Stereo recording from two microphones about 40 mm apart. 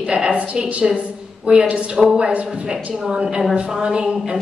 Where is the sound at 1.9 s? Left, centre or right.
Centre.